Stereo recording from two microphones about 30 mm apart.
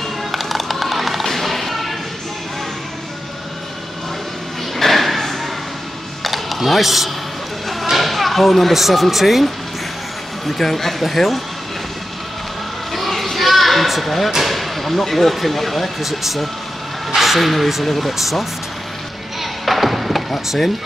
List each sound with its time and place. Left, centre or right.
0.3 s music: centre
4.7 s a sound: centre
8.8 s speech: centre
10.6 s speech: centre
12.9 s vehicle: centre
14.4 s speech: centre
19.4 s a sound: centre